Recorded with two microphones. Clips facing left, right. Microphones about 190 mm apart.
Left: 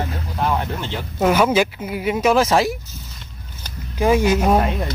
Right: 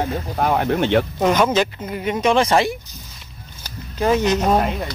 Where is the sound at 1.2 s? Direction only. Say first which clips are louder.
Left 5 dB; 5° left (ahead or behind).